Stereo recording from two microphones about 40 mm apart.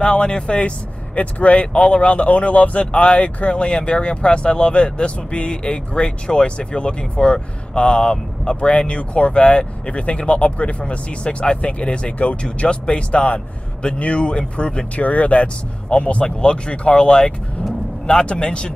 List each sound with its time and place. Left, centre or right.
0.0 s speech: left
15.0 s speech: left